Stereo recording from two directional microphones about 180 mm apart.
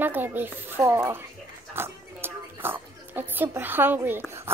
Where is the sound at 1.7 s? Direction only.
10° right (ahead or behind).